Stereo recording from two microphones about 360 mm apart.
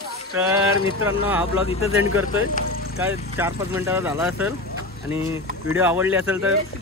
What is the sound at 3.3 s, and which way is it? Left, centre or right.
Speech, centre.